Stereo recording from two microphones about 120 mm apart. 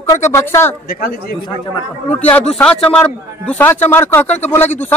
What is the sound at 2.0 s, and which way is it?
A man's voice, 15° left (ahead or behind).